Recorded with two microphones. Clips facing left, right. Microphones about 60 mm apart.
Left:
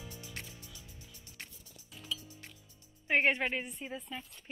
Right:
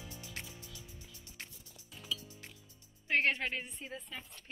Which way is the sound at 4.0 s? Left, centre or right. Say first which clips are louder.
Left 3 dB; centre.